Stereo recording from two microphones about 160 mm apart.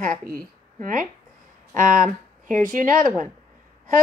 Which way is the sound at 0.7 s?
55° right (ahead or behind).